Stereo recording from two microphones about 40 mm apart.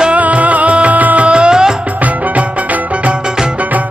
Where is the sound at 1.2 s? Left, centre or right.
Right.